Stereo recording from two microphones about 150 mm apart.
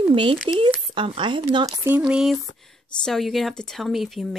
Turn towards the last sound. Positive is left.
turn(degrees=0)  # may be behind; listen again after turning